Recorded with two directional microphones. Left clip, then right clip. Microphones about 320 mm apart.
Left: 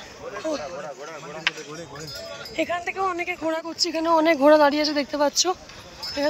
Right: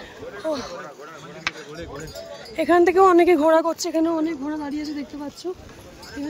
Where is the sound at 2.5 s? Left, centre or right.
Centre.